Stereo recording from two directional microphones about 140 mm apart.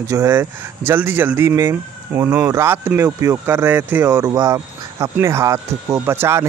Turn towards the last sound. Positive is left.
turn(degrees=-20)  # may be behind; listen again after turning